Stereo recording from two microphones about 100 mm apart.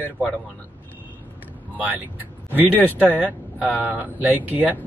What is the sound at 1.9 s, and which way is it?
Speech, 20° right (ahead or behind).